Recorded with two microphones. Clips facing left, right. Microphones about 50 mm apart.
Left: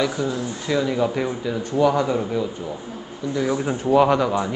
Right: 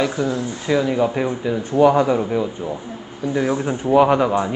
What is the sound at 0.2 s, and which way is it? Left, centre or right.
Speech, right.